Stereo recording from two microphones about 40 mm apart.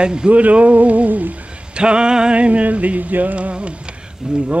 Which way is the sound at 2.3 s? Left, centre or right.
Right.